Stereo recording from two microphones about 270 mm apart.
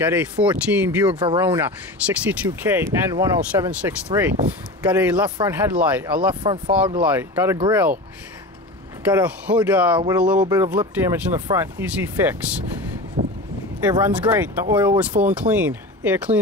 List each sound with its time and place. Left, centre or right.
0.2 s speech: centre
9.0 s speech: centre
13.2 s a sound: right
13.8 s speech: centre
14.7 s speech: centre
15.0 s speech: centre